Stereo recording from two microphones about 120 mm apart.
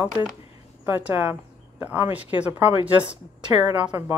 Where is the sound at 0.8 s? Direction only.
15° right (ahead or behind).